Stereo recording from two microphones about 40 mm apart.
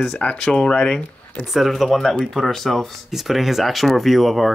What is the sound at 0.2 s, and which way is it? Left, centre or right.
Speech, left.